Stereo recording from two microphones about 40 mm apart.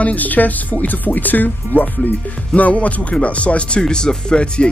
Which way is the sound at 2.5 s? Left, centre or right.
Left.